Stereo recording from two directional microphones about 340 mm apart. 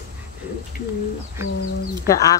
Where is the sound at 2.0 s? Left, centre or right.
Centre.